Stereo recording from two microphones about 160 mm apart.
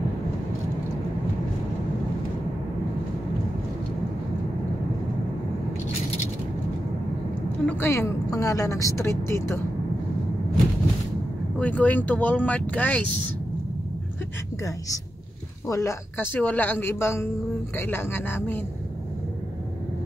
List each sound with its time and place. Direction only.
7.6 s speech: 15° left (ahead or behind)
11.5 s speech: 10° left (ahead or behind)
15.7 s speech: 20° left (ahead or behind)